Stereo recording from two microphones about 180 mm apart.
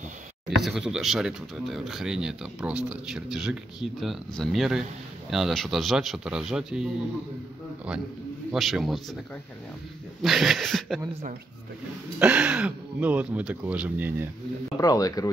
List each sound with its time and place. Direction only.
0.6 s speech: centre (ahead or behind)
8.5 s speech: centre (ahead or behind)
10.2 s speech: centre (ahead or behind)
12.2 s speech: 5° right (ahead or behind)
14.8 s speech: 20° left (ahead or behind)